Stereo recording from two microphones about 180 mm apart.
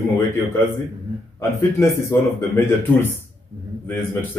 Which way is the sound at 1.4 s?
15° left (ahead or behind).